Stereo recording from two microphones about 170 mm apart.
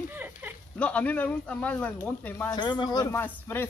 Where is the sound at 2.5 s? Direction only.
25° left (ahead or behind).